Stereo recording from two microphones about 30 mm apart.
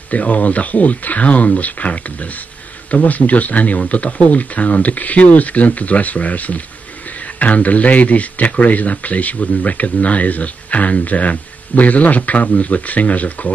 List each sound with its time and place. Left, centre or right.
0.1 s speech: left